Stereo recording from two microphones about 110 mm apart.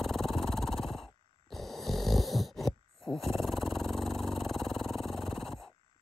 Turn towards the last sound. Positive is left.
turn(degrees=0)  # may be behind; listen again after turning